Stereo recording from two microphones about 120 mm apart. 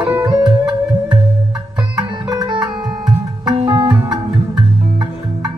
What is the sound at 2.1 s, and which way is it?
Music, 35° right (ahead or behind).